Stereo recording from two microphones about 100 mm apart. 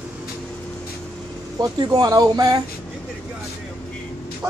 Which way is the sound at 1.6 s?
40° right (ahead or behind).